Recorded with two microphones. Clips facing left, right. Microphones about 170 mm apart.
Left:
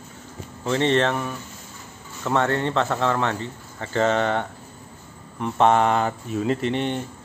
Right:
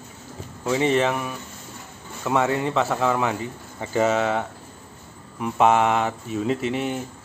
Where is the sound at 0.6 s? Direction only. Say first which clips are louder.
Even; 5° right (ahead or behind).